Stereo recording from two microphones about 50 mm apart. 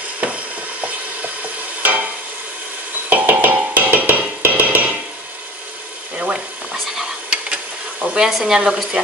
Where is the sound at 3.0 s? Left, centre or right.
Right.